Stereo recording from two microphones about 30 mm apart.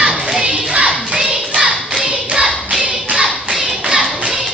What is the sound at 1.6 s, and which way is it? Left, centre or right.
Clapping, right.